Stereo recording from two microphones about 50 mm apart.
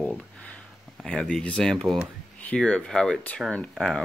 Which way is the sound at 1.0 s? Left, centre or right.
Centre.